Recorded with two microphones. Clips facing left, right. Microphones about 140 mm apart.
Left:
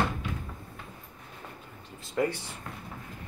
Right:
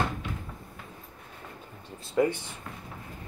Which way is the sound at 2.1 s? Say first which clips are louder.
Right 4 dB; 20° right (ahead or behind).